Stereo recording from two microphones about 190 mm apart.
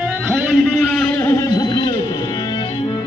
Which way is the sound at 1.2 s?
20° left (ahead or behind).